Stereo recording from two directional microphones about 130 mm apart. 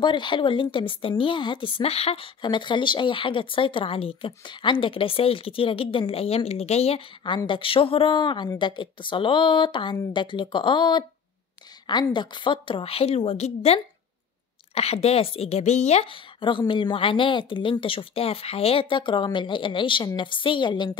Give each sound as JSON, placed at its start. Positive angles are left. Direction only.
{"t": 0.0, "sound": "a woman's voice", "side_deg": 35}